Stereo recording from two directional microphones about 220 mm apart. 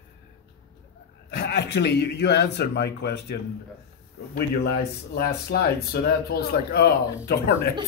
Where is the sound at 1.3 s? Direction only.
50° left (ahead or behind).